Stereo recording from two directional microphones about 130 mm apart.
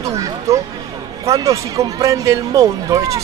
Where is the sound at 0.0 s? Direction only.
25° right (ahead or behind).